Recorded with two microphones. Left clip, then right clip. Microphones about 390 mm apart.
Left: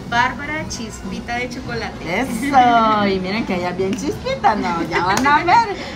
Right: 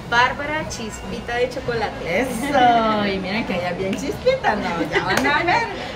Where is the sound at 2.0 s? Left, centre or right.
Centre.